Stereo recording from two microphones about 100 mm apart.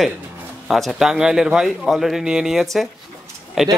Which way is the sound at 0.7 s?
Centre (ahead or behind).